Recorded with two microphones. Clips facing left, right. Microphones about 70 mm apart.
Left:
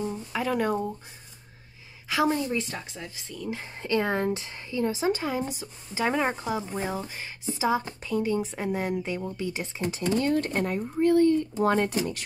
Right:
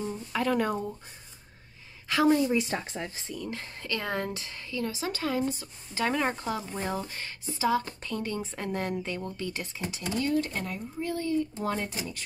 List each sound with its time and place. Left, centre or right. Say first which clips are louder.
0.1 s speech: even; centre
2.0 s a woman's voice: right 2 dB; centre
2.7 s speech: right 4 dB; right
3.4 s speech: left 6 dB; centre
3.7 s speech: left 7 dB; left
9.8 s speech: left 5 dB; left